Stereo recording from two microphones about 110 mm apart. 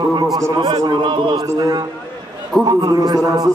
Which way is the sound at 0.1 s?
35° right (ahead or behind).